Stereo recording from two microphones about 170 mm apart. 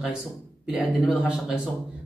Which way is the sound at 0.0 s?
5° right (ahead or behind).